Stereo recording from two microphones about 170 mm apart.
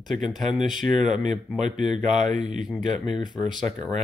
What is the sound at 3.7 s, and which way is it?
Speech, 15° left (ahead or behind).